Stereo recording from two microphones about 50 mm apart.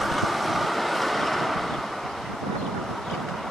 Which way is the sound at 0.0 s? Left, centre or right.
Centre.